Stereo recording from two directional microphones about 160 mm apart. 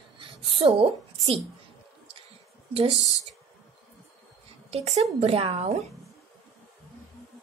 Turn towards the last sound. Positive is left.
turn(degrees=-40)  # may be behind; listen again after turning